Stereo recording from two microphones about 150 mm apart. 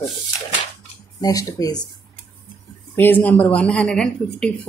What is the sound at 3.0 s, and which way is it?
Speech, 10° left (ahead or behind).